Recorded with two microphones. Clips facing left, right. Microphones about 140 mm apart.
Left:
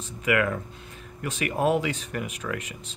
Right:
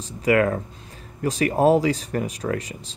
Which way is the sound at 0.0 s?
35° right (ahead or behind).